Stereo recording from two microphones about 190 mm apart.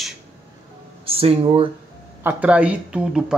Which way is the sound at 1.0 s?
30° right (ahead or behind).